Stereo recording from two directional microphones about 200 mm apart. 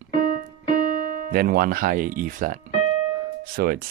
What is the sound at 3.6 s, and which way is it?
Speech, 50° right (ahead or behind).